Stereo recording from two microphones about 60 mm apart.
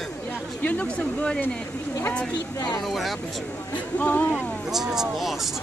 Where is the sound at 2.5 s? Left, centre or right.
Left.